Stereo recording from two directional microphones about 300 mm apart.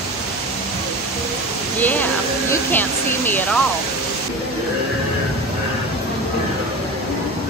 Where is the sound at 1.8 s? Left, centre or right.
Centre.